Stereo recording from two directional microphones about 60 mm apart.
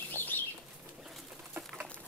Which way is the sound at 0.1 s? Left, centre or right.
Left.